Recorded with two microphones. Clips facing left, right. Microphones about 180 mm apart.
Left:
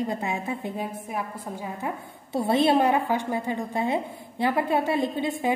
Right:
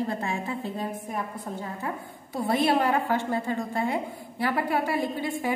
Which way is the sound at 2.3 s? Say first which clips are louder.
Left 3 dB; 25° left (ahead or behind).